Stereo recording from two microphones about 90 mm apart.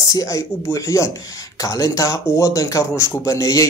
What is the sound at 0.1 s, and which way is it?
Speech, 40° left (ahead or behind).